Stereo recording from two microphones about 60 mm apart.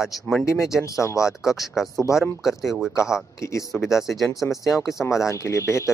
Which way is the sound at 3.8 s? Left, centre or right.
Centre.